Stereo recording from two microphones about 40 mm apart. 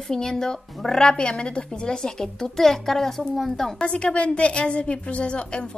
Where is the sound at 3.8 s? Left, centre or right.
Left.